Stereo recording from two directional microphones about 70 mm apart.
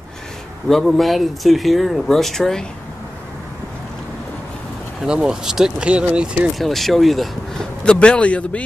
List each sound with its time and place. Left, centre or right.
0.7 s speech: centre
5.0 s speech: centre
6.6 s speech: centre
7.8 s a man's voice: centre